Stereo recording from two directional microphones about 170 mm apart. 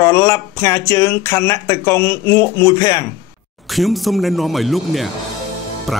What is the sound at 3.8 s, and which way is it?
Speech, centre (ahead or behind).